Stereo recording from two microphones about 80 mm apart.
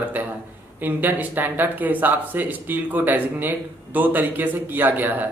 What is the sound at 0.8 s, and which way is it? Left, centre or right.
Speech, right.